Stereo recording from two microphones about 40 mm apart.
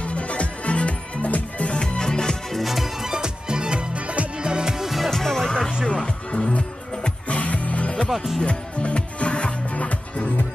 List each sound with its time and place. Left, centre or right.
0.0 s music: left
2.5 s music: centre
3.1 s music: centre
4.5 s music: centre
4.8 s music: centre
5.1 s music: centre
5.9 s music: left
6.5 s music: left